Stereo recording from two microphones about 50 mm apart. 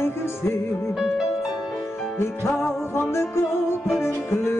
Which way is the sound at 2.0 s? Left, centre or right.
Left.